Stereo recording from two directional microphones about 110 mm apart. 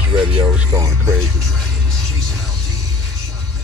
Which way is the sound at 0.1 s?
45° right (ahead or behind).